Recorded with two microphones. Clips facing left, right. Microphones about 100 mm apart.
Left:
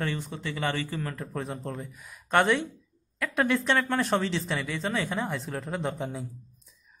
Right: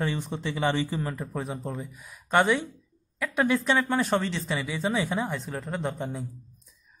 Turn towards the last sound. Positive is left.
turn(degrees=0)  # may be behind; listen again after turning